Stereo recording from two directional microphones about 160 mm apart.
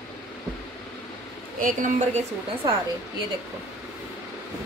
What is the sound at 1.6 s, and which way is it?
Speech, 55° right (ahead or behind).